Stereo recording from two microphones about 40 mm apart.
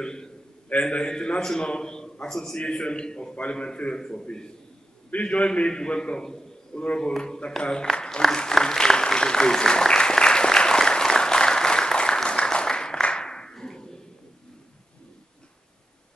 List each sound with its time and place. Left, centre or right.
0.0 s a man's voice: centre
2.5 s a man's voice: left
7.9 s applause: centre